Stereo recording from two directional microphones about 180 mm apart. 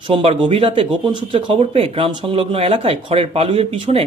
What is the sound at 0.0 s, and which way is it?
Speech, 30° right (ahead or behind).